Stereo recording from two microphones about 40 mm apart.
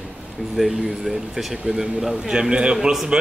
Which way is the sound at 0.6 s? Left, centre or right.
Centre.